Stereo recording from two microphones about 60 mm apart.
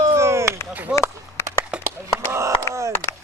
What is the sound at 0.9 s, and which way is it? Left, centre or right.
Speech, centre.